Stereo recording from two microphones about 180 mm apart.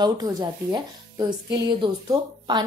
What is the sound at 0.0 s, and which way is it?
Speech, 20° right (ahead or behind).